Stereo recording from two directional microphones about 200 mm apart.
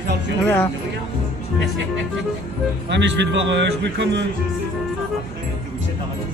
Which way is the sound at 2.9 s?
65° right (ahead or behind).